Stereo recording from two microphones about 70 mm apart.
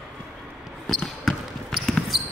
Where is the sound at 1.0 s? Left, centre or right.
Centre.